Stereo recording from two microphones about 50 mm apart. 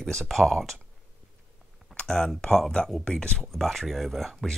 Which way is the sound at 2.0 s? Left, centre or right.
Centre.